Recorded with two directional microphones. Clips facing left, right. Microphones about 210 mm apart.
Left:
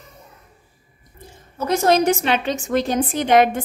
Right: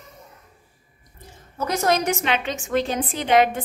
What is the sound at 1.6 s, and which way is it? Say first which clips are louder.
A woman's voice: left 5 dB; 30° left (ahead or behind).